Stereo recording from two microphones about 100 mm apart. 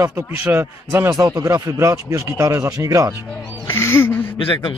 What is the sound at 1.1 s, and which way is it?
Speech, 35° right (ahead or behind).